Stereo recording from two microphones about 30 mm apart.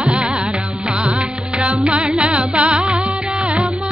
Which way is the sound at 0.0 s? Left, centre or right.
Right.